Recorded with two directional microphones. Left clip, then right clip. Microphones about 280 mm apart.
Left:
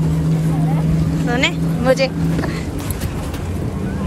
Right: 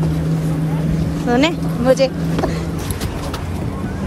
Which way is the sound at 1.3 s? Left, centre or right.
Centre.